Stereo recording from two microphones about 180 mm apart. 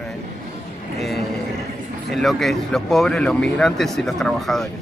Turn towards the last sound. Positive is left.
turn(degrees=0)  # may be behind; listen again after turning